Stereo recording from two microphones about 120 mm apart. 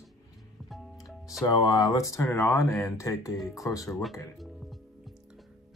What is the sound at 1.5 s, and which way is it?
Speech, 30° left (ahead or behind).